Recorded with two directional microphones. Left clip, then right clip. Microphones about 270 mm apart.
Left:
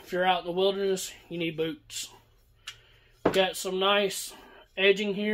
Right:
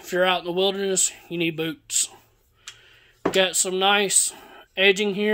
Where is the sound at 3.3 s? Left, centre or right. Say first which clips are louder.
Right 7 dB; right.